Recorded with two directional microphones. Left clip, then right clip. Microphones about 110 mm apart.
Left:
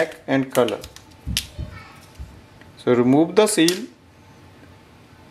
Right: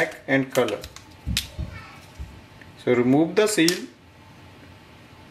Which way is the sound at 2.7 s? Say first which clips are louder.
Left 3 dB; 35° left (ahead or behind).